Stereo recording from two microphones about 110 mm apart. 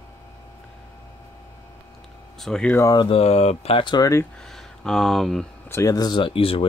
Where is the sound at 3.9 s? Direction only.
30° left (ahead or behind).